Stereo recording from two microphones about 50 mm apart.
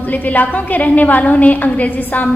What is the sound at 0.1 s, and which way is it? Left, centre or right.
A woman's voice, left.